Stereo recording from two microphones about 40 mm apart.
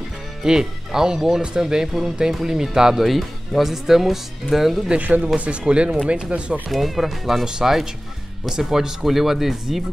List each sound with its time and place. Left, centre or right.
0.4 s speech: centre
3.1 s speech: centre
4.9 s speech: right
5.3 s speech: right
6.7 s speech: centre
7.4 s speech: centre